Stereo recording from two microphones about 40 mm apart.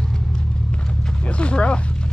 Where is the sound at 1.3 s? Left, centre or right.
Left.